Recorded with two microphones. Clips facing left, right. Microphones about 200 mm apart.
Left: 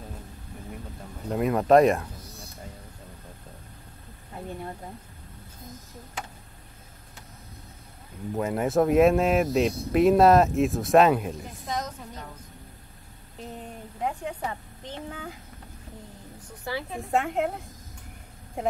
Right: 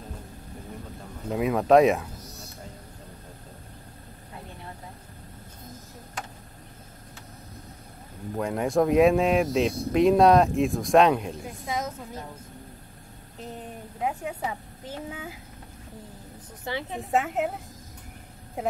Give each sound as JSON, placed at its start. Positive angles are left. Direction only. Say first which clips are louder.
{"t": 1.3, "sound": "speech", "louder": "even", "side_deg": 0}
{"t": 8.4, "sound": "speech", "louder": "even", "side_deg": 5}
{"t": 13.4, "sound": "a sound", "louder": "even", "side_deg": -5}
{"t": 16.6, "sound": "a woman's voice", "louder": "even", "side_deg": -20}
{"t": 17.1, "sound": "speech", "louder": "even", "side_deg": 0}
{"t": 18.6, "sound": "speech", "louder": "left 1 dB", "side_deg": 0}